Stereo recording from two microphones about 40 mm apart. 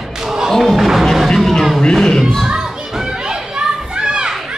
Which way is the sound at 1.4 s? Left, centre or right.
Centre.